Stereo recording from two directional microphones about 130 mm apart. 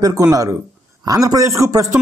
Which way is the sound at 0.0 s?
25° right (ahead or behind).